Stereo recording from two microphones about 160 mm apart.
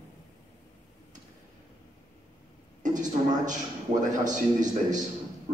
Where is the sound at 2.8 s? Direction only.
50° right (ahead or behind).